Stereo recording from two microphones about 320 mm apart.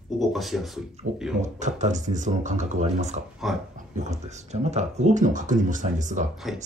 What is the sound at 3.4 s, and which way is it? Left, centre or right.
Speech, centre.